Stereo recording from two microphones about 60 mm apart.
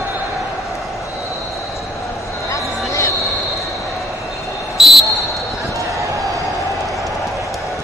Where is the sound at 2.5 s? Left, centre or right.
Left.